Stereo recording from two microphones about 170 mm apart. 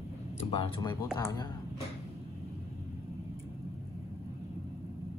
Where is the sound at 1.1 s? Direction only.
20° left (ahead or behind).